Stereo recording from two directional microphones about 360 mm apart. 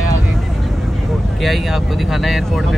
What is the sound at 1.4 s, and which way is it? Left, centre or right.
Speech, centre.